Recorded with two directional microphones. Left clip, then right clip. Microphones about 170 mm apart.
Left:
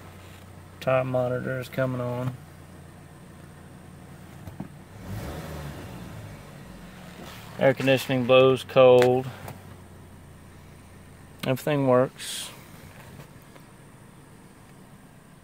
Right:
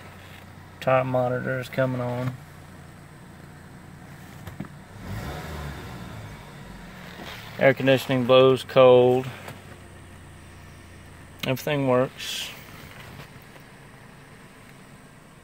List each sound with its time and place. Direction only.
0.7 s speech: 10° left (ahead or behind)
7.5 s speech: centre (ahead or behind)
11.4 s speech: 20° left (ahead or behind)